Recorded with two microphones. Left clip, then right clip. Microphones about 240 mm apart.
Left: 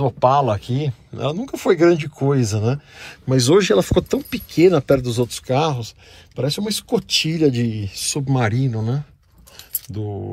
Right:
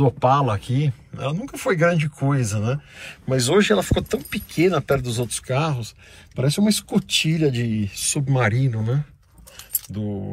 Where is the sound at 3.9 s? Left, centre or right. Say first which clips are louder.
Left 5 dB; right.